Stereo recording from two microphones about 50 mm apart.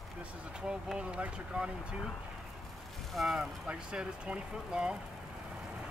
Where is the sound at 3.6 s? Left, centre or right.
Right.